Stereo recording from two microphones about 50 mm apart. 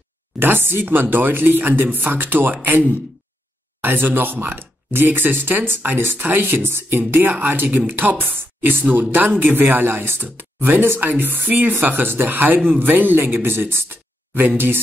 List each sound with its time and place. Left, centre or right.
0.4 s speech: right
8.4 s speech: right